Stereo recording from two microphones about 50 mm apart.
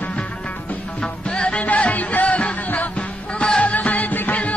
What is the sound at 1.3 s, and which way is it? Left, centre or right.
Music, left.